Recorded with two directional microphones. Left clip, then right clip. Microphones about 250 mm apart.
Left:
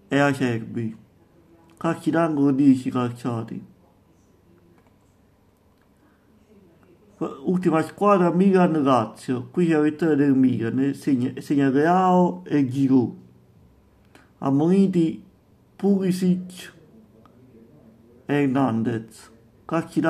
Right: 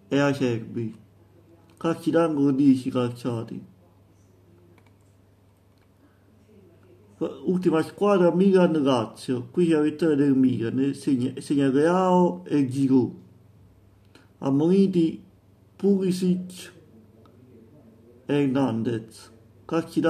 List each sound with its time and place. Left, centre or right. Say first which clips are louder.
0.1 s a man's voice: left 2 dB; centre
7.2 s a man's voice: left 1 dB; centre
14.6 s a man's voice: even; centre
18.2 s a man's voice: left 2 dB; centre